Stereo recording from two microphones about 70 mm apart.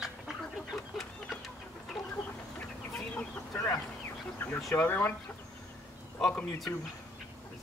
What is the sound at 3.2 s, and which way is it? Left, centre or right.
Chicken, left.